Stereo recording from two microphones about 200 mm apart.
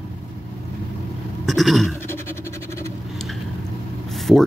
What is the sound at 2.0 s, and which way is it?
Vehicle, 10° left (ahead or behind).